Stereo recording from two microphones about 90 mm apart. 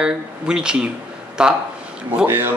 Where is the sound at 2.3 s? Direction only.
25° right (ahead or behind).